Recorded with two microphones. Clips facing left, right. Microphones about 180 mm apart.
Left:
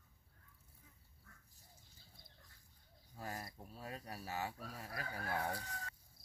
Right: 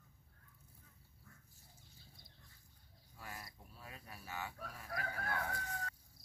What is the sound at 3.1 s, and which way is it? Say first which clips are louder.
Fowl: left 5 dB; 40° left (ahead or behind).